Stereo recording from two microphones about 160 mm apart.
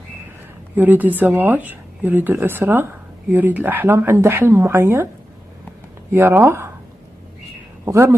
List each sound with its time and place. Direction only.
0.7 s speech: 10° right (ahead or behind)
6.1 s speech: 15° right (ahead or behind)
7.8 s speech: 15° right (ahead or behind)